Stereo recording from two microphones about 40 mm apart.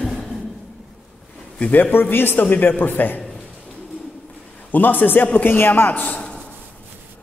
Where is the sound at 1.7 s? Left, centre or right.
Left.